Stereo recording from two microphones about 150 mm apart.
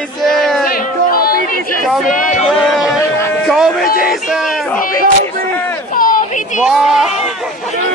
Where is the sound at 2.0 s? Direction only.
55° left (ahead or behind).